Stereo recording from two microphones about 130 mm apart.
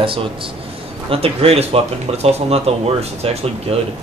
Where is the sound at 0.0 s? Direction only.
45° right (ahead or behind).